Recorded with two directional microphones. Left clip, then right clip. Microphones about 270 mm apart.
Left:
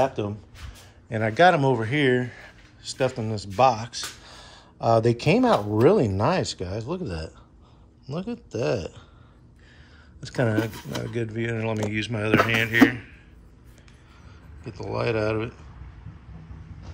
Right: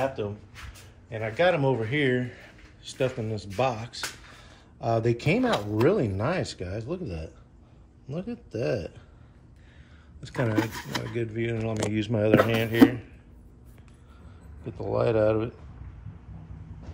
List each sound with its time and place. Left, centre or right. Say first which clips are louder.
1.3 s a man's voice: left 5 dB; centre
10.2 s a man's voice: left 3 dB; centre
14.6 s a man's voice: right 2 dB; centre